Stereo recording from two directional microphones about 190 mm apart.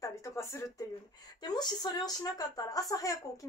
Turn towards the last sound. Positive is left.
turn(degrees=20)  # may be behind; listen again after turning